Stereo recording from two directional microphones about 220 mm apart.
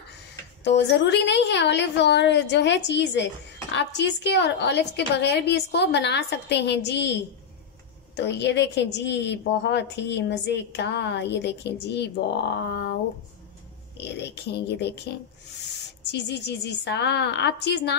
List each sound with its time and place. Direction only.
0.7 s a woman's voice: 50° left (ahead or behind)
8.2 s a woman's voice: 50° left (ahead or behind)
13.9 s a woman's voice: 50° left (ahead or behind)
16.1 s a woman's voice: 50° left (ahead or behind)